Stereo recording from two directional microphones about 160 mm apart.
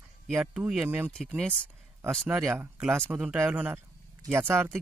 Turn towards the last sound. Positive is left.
turn(degrees=-15)  # may be behind; listen again after turning